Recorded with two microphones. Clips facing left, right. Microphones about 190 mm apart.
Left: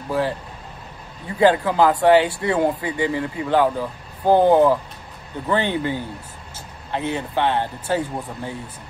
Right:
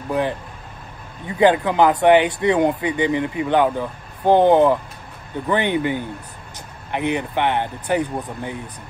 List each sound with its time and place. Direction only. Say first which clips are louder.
0.1 s speech: right 1 dB; 20° right (ahead or behind)